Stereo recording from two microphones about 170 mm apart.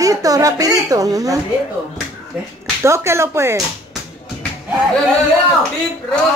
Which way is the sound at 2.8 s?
15° right (ahead or behind).